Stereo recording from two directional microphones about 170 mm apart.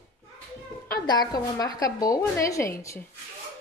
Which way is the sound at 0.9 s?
25° left (ahead or behind).